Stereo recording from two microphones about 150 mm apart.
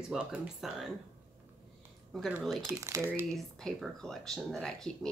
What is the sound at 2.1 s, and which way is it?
Speech, centre (ahead or behind).